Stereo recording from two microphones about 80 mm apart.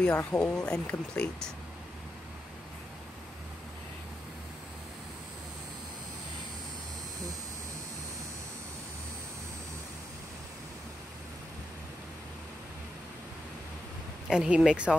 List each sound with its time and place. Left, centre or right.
0.1 s speech: left
0.4 s speech: centre
14.3 s speech: centre